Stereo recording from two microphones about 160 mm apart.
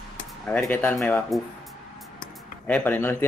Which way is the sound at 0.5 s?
10° left (ahead or behind).